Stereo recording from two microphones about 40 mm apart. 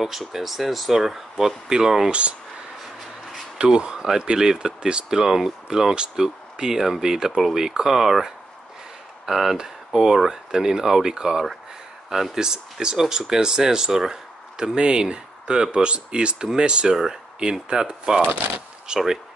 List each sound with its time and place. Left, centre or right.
0.3 s speech: centre
2.0 s speech: right
3.5 s speech: right